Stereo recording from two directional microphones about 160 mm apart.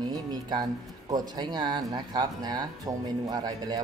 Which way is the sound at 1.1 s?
25° right (ahead or behind).